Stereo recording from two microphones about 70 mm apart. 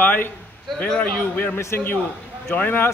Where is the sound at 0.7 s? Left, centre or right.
Centre.